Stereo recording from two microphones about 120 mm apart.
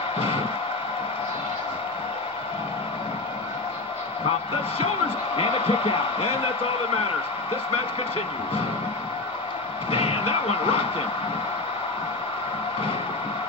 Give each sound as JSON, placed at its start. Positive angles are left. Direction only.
{"t": 5.4, "sound": "a man's voice", "side_deg": 50}
{"t": 9.8, "sound": "speech", "side_deg": 55}